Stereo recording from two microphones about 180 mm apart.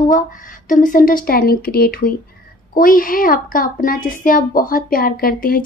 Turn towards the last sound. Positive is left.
turn(degrees=55)  # may be behind; listen again after turning